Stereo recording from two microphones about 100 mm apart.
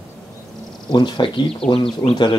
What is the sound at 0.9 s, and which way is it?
Speech, 55° left (ahead or behind).